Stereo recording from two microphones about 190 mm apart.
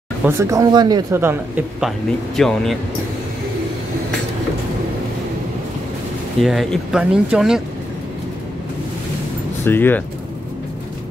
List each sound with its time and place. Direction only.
0.2 s speech: 15° right (ahead or behind)
1.8 s speech: centre (ahead or behind)
6.4 s speech: centre (ahead or behind)
9.7 s speech: 10° left (ahead or behind)